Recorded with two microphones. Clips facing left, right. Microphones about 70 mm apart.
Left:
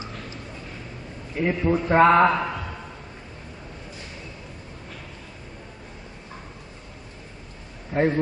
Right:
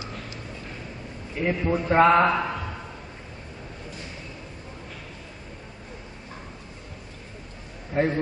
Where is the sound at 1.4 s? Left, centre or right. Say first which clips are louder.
Left 2 dB; centre.